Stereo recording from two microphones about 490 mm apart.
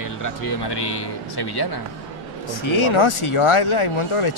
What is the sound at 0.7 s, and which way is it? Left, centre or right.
Speech, left.